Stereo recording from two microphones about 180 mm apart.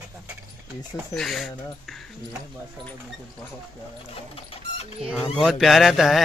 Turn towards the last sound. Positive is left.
turn(degrees=0)  # may be behind; listen again after turning